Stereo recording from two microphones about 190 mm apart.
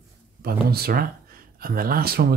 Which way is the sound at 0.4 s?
55° right (ahead or behind).